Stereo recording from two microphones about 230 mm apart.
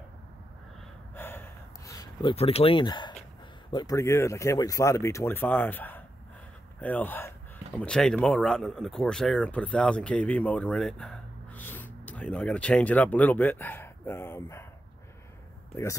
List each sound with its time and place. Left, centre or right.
1.1 s gasp: centre
1.9 s a sound: centre
2.3 s speech: left; by 14.7 s centre
15.7 s speech: centre